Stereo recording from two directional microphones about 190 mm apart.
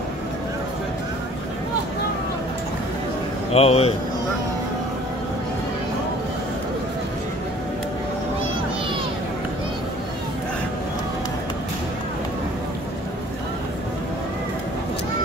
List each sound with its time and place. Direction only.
3.5 s a man's voice: 30° left (ahead or behind)